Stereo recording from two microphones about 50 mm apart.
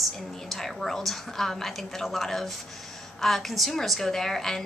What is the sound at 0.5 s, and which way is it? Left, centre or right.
A woman's voice, centre.